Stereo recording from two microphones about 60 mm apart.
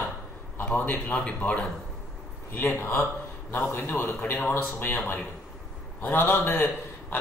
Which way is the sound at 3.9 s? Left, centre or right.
Left.